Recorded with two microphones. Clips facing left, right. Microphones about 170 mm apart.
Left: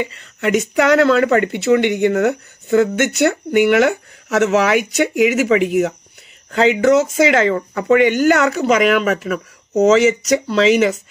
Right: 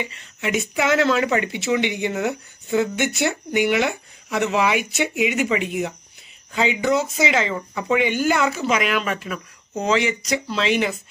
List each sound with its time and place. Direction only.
0.0 s speech: 60° left (ahead or behind); by 7.1 s 90° left
7.2 s speech: 50° left (ahead or behind); by 8.6 s 70° left (ahead or behind)
9.0 s speech: 80° left